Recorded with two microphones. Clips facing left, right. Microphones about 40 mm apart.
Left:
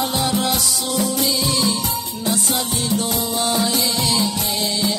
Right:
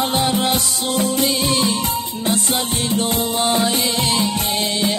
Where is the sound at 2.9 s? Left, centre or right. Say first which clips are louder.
Right 2 dB; right.